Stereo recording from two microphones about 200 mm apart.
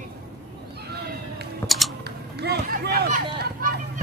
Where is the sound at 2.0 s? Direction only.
55° right (ahead or behind).